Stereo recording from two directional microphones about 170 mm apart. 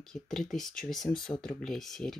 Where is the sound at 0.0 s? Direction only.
5° left (ahead or behind).